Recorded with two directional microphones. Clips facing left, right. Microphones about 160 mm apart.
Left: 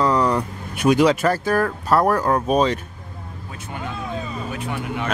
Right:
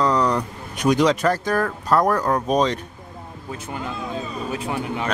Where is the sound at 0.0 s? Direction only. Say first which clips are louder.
Left 1 dB; 10° left (ahead or behind).